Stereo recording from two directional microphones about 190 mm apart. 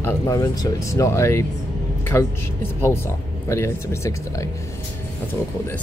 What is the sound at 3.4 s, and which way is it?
Speech, 15° left (ahead or behind).